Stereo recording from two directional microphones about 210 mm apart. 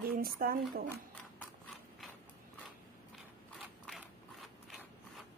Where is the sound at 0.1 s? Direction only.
45° right (ahead or behind).